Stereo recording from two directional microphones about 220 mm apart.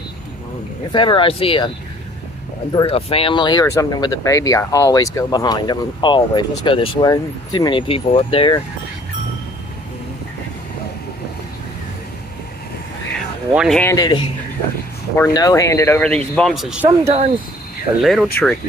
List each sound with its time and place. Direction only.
0.9 s speech: 20° left (ahead or behind)
2.7 s speech: 25° left (ahead or behind)
13.5 s speech: centre (ahead or behind)
13.9 s speech: 20° left (ahead or behind); by 18.3 s centre (ahead or behind)